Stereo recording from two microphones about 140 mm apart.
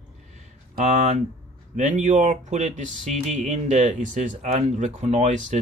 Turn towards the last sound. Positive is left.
turn(degrees=-60)  # may be behind; listen again after turning